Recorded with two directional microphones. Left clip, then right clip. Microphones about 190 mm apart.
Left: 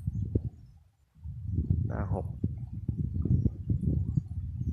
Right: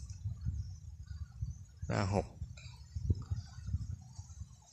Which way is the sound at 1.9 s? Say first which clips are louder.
Right 4 dB; 20° right (ahead or behind).